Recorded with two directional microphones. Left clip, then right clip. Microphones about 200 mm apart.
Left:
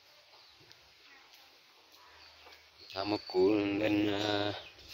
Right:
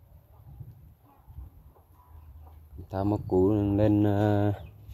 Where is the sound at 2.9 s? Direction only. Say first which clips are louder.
Right 5 dB; 25° right (ahead or behind).